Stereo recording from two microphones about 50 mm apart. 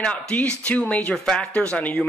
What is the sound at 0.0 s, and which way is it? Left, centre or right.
Speech, left.